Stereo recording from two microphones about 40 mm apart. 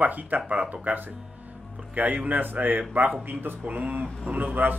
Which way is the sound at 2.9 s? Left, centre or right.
Right.